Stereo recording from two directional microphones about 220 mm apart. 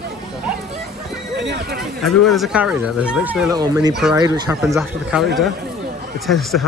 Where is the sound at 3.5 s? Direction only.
15° right (ahead or behind).